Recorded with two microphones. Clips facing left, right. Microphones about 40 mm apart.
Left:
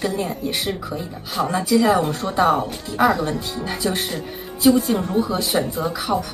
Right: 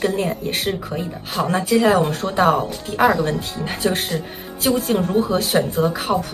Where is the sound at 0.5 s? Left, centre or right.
Right.